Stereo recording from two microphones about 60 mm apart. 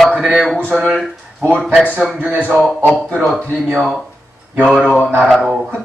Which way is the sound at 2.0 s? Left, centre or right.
Centre.